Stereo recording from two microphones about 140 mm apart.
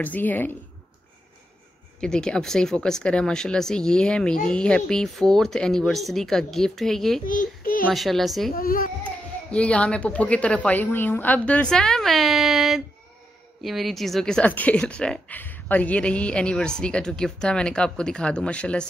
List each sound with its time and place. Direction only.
0.0 s a woman's voice: 10° left (ahead or behind)
2.0 s speech: 5° left (ahead or behind)
7.2 s a child's voice: 80° left
7.9 s speech: centre (ahead or behind)
8.5 s a child's voice: 90° left
9.0 s a woman's voice: 10° left (ahead or behind)